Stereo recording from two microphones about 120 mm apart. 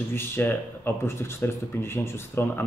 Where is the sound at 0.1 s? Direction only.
20° left (ahead or behind).